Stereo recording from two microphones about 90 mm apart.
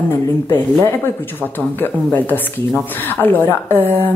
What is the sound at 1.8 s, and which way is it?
Speech, 20° left (ahead or behind).